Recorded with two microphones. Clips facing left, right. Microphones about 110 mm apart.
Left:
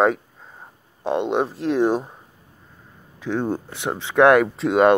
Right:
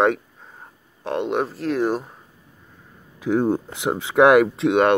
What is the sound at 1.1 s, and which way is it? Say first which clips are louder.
Speech: left 1 dB; 20° left (ahead or behind).